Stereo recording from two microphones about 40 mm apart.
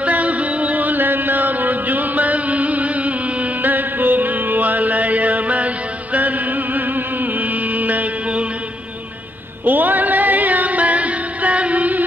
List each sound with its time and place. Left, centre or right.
0.0 s music: right
9.7 s music: right